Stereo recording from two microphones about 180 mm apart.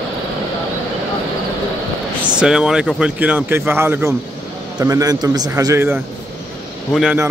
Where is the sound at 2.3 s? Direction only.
5° right (ahead or behind).